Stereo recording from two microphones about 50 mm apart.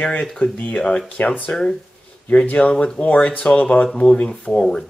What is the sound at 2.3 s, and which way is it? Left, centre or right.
Speech, left.